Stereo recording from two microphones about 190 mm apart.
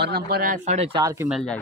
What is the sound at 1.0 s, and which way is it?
Speech, 15° right (ahead or behind).